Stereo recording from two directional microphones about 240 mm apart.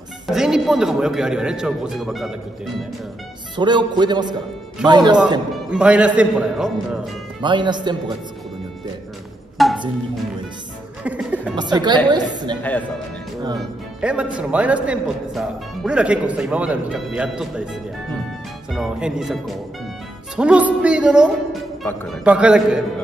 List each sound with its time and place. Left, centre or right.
0.3 s a man's voice: centre
3.5 s a man's voice: centre
5.7 s a man's voice: centre
7.4 s a man's voice: centre
9.6 s music: centre
11.1 s a man's voice: centre
11.5 s a man's voice: centre
13.6 s a man's voice: centre
18.7 s a man's voice: centre